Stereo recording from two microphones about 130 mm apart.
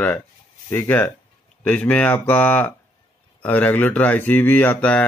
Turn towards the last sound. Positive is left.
turn(degrees=15)  # may be behind; listen again after turning